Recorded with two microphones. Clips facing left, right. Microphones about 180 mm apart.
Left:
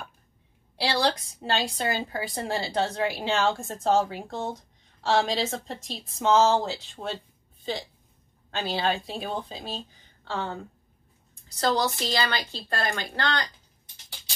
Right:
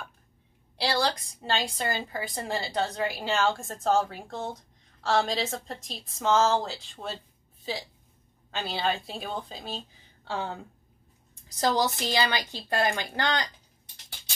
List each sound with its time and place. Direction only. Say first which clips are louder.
0.9 s a woman's voice: left 4 dB; centre (ahead or behind)
8.5 s a woman's voice: left 2 dB; centre (ahead or behind)
10.2 s a woman's voice: left 1 dB; 10° right (ahead or behind)
11.6 s a woman's voice: even; 15° right (ahead or behind)